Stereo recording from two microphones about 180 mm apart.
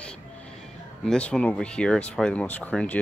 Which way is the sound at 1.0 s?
5° left (ahead or behind).